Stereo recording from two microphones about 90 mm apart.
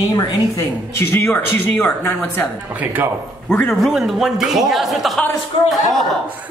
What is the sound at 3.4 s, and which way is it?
Speech, 15° left (ahead or behind).